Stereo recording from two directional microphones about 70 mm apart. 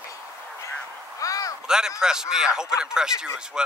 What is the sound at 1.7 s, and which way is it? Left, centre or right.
A man's voice, centre.